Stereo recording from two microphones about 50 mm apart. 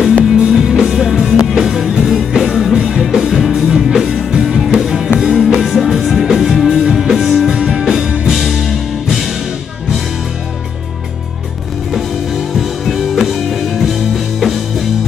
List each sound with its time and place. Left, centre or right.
0.4 s music: centre
7.5 s music: centre
8.3 s music: centre
11.9 s music: centre